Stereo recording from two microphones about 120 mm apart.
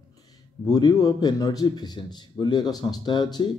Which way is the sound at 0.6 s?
30° left (ahead or behind).